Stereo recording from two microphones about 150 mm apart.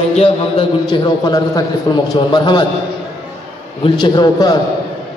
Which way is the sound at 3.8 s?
30° left (ahead or behind).